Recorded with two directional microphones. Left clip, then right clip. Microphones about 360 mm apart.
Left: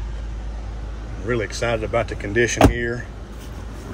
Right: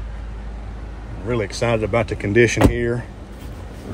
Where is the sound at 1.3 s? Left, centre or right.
Centre.